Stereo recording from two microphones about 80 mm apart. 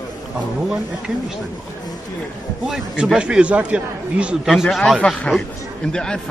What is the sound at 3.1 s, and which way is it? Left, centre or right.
Speech, centre.